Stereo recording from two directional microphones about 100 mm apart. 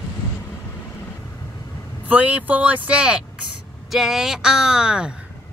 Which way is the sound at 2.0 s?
15° right (ahead or behind).